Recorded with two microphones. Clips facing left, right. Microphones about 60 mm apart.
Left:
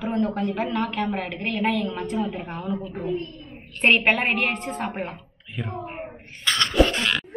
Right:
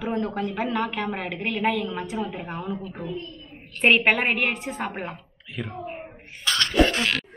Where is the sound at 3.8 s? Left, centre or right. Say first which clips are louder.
Even; centre.